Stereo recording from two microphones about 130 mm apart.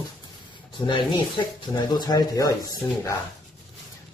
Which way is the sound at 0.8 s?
35° left (ahead or behind).